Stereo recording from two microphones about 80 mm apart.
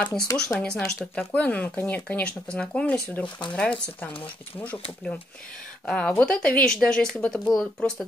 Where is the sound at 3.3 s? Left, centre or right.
Left.